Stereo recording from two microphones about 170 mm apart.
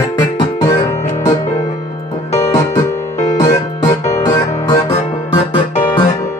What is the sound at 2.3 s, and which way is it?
Music, 25° left (ahead or behind).